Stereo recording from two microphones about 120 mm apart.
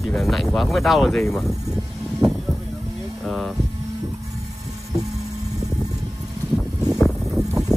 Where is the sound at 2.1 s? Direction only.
Centre (ahead or behind).